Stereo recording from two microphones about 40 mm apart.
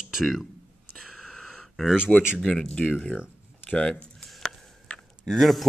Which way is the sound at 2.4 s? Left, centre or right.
Centre.